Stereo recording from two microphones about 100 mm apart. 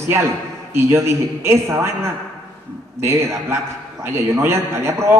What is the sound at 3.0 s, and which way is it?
A man's voice, 30° right (ahead or behind).